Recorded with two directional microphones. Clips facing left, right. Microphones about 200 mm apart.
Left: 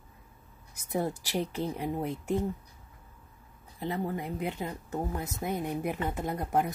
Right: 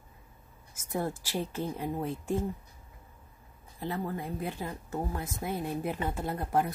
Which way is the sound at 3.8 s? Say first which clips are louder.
Left 2 dB; 20° left (ahead or behind).